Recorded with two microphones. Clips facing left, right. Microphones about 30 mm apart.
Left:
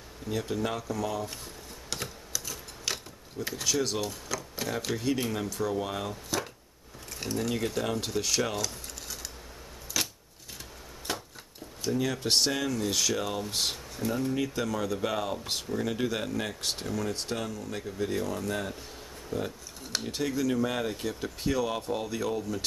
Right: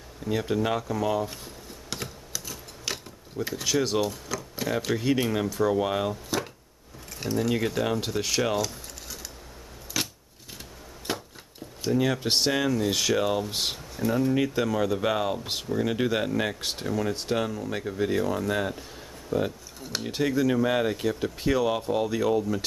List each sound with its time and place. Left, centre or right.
0.3 s speech: centre
1.4 s typing: centre
3.6 s speech: centre
7.2 s speech: centre
9.9 s a sound: centre
11.8 s speech: centre
14.3 s speech: centre
16.6 s speech: centre; by 18.1 s right
18.1 s speech: centre
19.3 s speech: centre
19.8 s a sound: centre
20.1 s speech: centre